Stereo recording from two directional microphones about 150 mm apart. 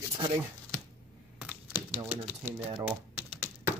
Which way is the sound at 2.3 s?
15° right (ahead or behind).